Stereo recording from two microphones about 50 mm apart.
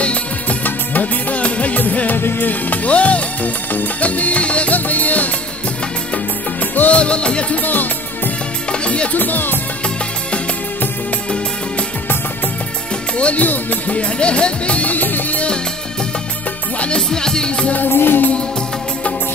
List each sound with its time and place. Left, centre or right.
0.0 s music: left
6.7 s music: left
7.0 s speech: left
8.7 s music: left
9.1 s music: left
13.2 s speech: left
16.8 s music: centre
17.7 s music: left